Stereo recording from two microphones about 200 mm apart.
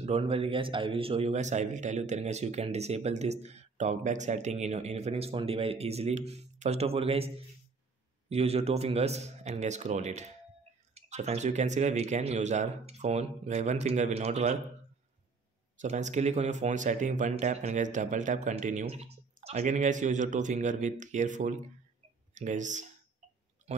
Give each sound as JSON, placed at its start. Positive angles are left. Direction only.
{"t": 0.0, "sound": "a man's voice", "side_deg": -30}
{"t": 15.8, "sound": "a man's voice", "side_deg": -35}